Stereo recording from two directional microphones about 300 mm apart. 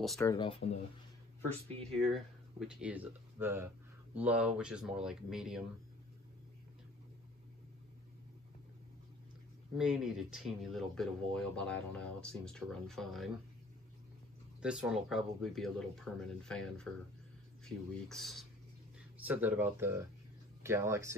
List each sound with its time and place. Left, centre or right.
0.2 s speech: centre
2.0 s speech: centre
9.8 s speech: centre
14.6 s speech: centre